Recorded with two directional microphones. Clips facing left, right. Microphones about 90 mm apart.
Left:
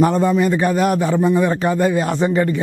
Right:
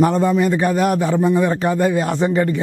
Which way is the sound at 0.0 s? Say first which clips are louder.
Even; 20° left (ahead or behind).